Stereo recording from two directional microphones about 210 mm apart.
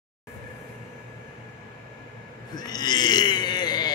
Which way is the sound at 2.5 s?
20° left (ahead or behind).